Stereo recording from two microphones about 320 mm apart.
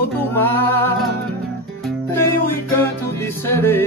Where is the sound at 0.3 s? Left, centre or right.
Centre.